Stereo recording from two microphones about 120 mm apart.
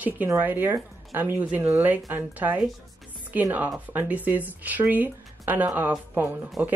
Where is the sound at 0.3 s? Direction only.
15° right (ahead or behind).